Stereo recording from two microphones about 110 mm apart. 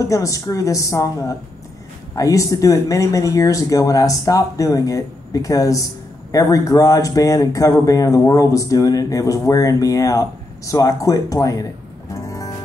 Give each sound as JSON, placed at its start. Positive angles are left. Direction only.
{"t": 0.0, "sound": "a woman's voice", "side_deg": 30}
{"t": 12.1, "sound": "music", "side_deg": 30}